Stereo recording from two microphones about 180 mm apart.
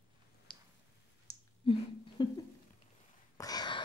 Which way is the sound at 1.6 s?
30° left (ahead or behind).